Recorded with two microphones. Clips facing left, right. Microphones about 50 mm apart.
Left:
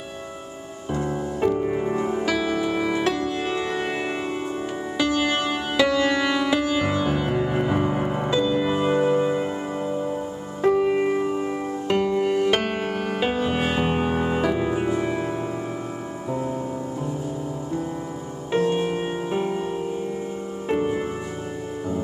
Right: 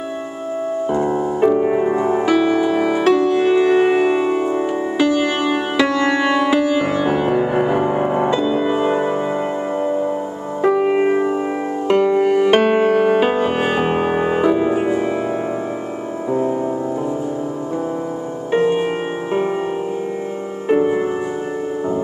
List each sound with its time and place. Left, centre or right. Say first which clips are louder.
0.9 s music: right 5 dB; centre
10.6 s music: right 4 dB; right
18.5 s music: right 5 dB; right
20.6 s music: right 8 dB; centre